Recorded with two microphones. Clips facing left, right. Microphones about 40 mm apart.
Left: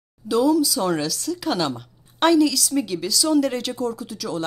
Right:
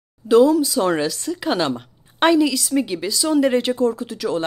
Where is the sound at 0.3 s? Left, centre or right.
Right.